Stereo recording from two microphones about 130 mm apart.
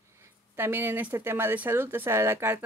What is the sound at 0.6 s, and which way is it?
Speech, 15° right (ahead or behind).